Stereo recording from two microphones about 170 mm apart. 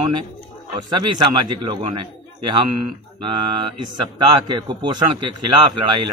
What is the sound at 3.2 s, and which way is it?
Speech, 30° right (ahead or behind).